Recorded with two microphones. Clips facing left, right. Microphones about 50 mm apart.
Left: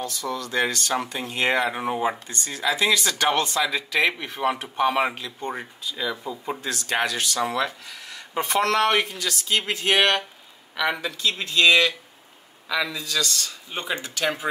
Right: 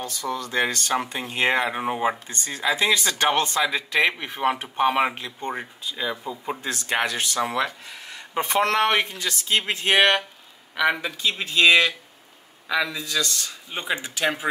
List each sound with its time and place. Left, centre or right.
0.0 s speech: right
1.7 s speech: centre
2.3 s speech: right
10.8 s a man's voice: centre